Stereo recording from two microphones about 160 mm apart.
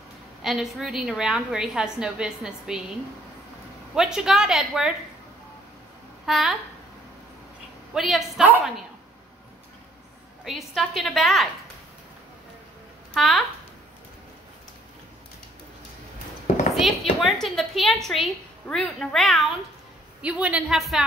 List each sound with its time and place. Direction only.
0.4 s a woman's voice: centre (ahead or behind)
3.9 s a woman's voice: 5° right (ahead or behind)
6.2 s a child's voice: centre (ahead or behind)
7.9 s a woman's voice: centre (ahead or behind)
10.4 s a woman's voice: centre (ahead or behind)
13.1 s speech: centre (ahead or behind)
16.7 s a woman's voice: centre (ahead or behind)